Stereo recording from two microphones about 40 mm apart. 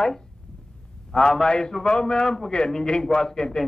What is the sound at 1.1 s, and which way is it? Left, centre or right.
A man's voice, centre.